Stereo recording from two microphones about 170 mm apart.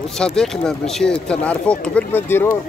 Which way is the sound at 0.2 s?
5° left (ahead or behind).